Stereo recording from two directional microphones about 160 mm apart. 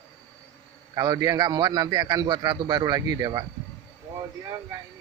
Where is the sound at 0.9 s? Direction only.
25° right (ahead or behind).